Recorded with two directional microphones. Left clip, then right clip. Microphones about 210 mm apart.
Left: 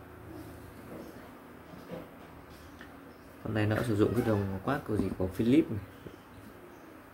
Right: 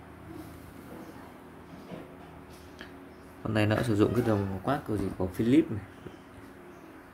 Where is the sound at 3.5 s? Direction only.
20° right (ahead or behind).